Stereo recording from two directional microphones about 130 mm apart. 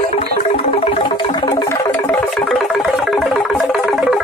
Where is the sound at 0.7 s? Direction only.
45° left (ahead or behind).